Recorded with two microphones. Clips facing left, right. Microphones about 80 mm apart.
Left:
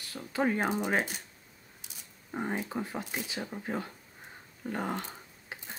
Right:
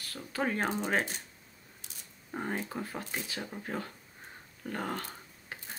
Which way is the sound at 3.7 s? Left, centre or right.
Centre.